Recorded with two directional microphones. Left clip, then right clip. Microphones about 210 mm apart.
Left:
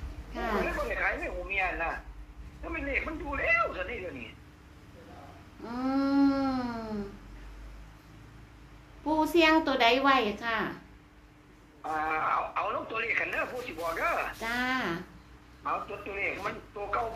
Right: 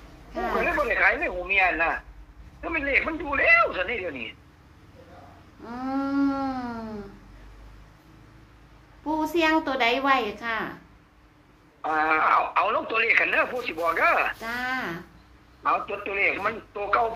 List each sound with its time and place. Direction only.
0.3 s vehicle: 5° left (ahead or behind)
0.7 s speech: 40° right (ahead or behind)
5.9 s a sound: 5° left (ahead or behind)
9.0 s a woman's voice: 5° left (ahead or behind)
11.8 s speech: 40° right (ahead or behind)
14.4 s speech: 10° left (ahead or behind)
15.6 s speech: 35° right (ahead or behind)